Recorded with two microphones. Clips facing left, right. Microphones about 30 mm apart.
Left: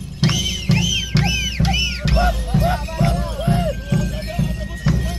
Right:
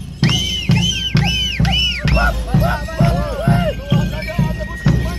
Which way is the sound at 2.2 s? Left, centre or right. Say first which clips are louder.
Left 1 dB; centre.